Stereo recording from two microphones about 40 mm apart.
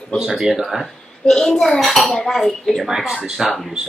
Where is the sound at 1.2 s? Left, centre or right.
Centre.